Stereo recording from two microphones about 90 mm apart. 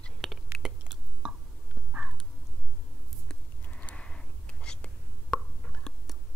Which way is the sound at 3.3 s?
15° left (ahead or behind).